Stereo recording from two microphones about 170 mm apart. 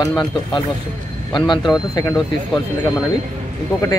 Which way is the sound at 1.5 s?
25° left (ahead or behind).